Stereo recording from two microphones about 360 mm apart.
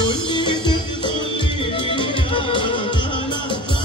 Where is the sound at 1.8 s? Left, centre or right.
Centre.